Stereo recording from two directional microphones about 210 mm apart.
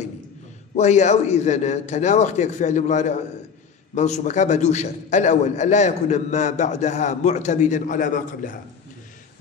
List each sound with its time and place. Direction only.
0.7 s a man's voice: 35° left (ahead or behind)